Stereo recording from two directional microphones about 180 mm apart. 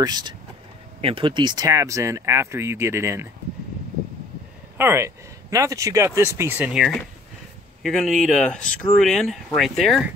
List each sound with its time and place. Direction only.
0.0 s speech: 25° right (ahead or behind)
4.7 s speech: 15° right (ahead or behind)